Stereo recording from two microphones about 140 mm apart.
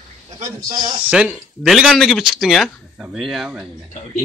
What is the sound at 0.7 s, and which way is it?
Speech, 30° right (ahead or behind).